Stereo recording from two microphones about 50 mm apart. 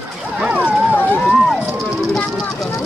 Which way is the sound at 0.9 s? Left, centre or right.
Left.